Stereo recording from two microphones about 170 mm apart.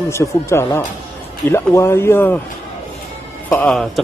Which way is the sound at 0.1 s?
15° left (ahead or behind).